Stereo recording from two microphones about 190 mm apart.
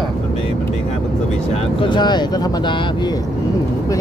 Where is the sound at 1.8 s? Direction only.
25° left (ahead or behind).